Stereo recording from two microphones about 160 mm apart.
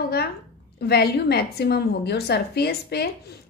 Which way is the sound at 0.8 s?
85° left.